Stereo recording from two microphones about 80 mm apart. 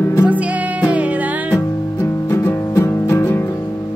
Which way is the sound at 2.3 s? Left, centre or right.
Left.